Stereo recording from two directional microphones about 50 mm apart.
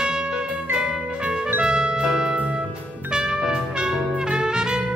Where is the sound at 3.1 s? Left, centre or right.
Centre.